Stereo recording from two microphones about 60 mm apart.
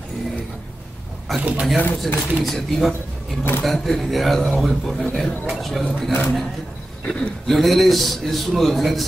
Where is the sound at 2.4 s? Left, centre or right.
Centre.